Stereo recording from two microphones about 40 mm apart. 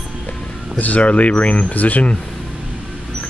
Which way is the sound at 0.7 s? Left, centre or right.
Left.